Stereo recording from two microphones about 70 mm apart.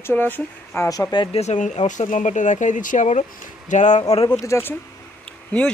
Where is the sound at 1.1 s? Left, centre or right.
Left.